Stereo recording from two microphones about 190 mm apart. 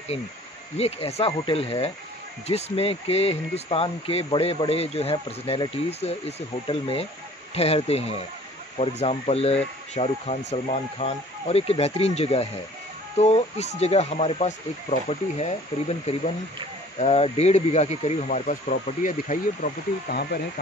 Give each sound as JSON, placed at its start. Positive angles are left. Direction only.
{"t": 0.7, "sound": "speech", "side_deg": 30}